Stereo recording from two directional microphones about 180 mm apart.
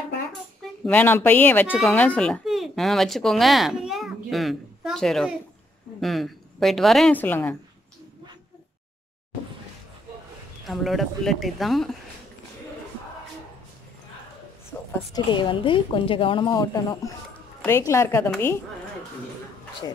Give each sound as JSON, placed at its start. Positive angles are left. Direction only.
{"t": 0.8, "sound": "a child's voice", "side_deg": 10}
{"t": 10.7, "sound": "speech", "side_deg": 0}
{"t": 15.1, "sound": "a woman's voice", "side_deg": 25}